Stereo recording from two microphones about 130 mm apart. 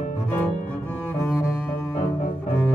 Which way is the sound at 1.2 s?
20° left (ahead or behind).